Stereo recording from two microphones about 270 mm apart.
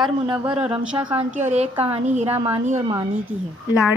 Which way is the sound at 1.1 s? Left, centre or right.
Right.